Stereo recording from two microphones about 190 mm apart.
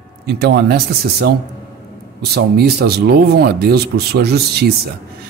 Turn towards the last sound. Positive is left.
turn(degrees=-60)  # may be behind; listen again after turning